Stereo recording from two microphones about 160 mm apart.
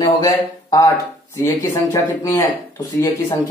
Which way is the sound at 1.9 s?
20° left (ahead or behind).